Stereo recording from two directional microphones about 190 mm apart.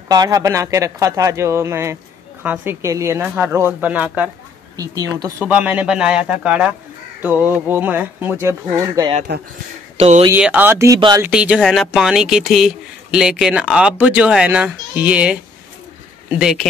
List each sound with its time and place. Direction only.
0.1 s speech: 20° right (ahead or behind)
4.7 s a woman's voice: 20° right (ahead or behind)
5.4 s speech: 5° right (ahead or behind)
9.3 s speech: 60° right (ahead or behind)
9.9 s speech: 35° right (ahead or behind)
10.3 s speech: 10° right (ahead or behind)
11.0 s a woman's voice: 25° right (ahead or behind)
11.2 s speech: 5° right (ahead or behind)